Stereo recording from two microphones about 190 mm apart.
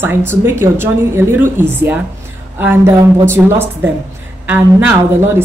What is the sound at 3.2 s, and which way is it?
Speech, 10° right (ahead or behind).